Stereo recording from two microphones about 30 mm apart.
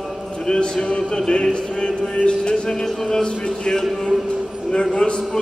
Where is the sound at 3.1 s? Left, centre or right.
Left.